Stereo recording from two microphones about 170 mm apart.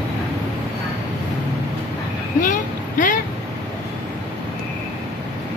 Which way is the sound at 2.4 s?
50° left (ahead or behind).